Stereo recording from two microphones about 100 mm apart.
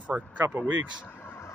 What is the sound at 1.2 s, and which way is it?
Vehicle, 25° left (ahead or behind).